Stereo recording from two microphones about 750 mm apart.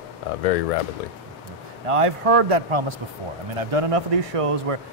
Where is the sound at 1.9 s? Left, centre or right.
Right.